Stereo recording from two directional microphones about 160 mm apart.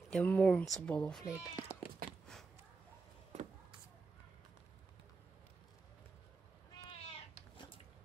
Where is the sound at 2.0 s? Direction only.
65° right (ahead or behind).